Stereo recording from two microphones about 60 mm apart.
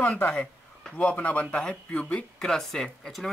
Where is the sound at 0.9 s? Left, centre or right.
Left.